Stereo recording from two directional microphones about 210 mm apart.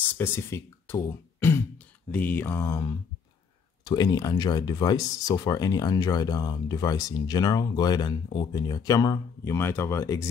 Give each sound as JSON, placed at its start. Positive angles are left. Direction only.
{"t": 0.1, "sound": "speech", "side_deg": 10}